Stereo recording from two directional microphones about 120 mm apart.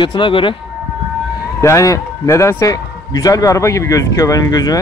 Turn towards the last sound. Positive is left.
turn(degrees=30)  # may be behind; listen again after turning